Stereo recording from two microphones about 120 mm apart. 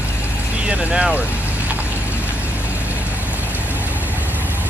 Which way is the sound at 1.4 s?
15° right (ahead or behind).